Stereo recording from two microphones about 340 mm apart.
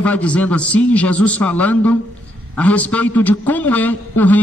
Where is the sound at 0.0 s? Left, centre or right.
Centre.